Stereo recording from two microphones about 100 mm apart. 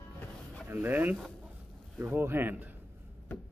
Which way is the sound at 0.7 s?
20° right (ahead or behind).